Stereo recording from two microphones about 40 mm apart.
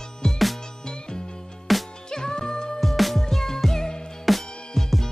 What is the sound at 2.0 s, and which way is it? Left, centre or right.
Music, centre.